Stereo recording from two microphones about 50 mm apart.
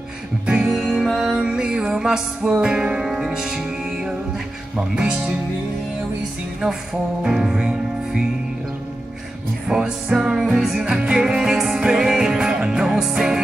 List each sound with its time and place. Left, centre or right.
0.7 s music: centre
1.4 s music: centre
4.7 s speech: centre
6.6 s music: centre
9.7 s music: centre